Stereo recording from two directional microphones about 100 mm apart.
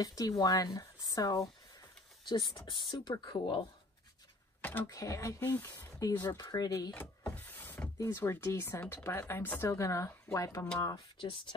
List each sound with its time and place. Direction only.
0.0 s speech: 40° left (ahead or behind)
2.2 s speech: 50° left (ahead or behind)
4.6 s speech: 20° left (ahead or behind)
4.8 s speech: 35° left (ahead or behind)
5.4 s speech: 20° left (ahead or behind)
6.3 s speech: 40° left (ahead or behind)
6.9 s power windows: 15° left (ahead or behind)
8.0 s speech: 25° left (ahead or behind)
11.1 s speech: 55° left (ahead or behind)